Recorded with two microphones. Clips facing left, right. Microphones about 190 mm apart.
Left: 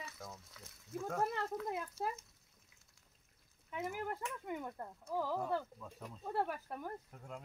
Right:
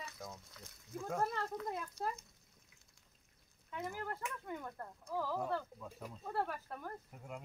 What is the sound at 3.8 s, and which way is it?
Speech, 10° left (ahead or behind).